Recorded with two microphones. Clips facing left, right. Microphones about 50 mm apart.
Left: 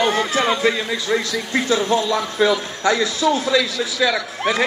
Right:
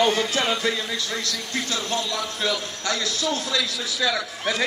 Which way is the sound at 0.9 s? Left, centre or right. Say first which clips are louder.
Left 7 dB; left.